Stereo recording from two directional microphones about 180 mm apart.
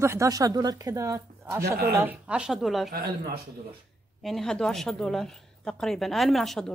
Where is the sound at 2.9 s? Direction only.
60° right (ahead or behind).